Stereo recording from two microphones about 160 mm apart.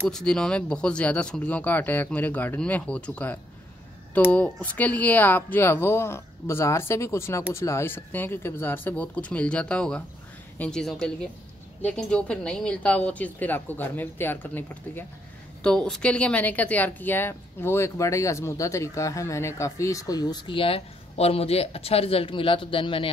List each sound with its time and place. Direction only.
0.1 s speech: 5° left (ahead or behind); by 23.0 s 30° left (ahead or behind)